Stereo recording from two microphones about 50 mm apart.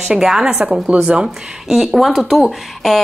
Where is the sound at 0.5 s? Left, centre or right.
Right.